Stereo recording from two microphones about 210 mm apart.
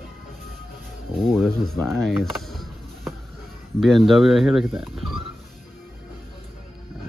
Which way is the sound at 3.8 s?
Centre (ahead or behind).